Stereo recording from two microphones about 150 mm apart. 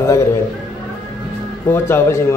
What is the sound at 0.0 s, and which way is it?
Speech, 20° left (ahead or behind).